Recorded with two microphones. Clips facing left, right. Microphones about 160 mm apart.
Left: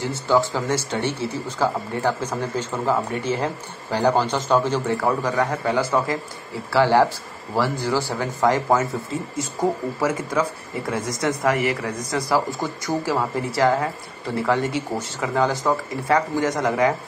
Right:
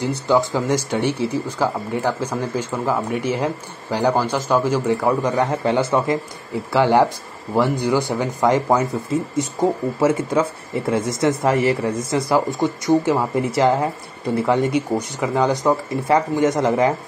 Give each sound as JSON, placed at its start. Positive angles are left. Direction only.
{"t": 0.0, "sound": "speech", "side_deg": -20}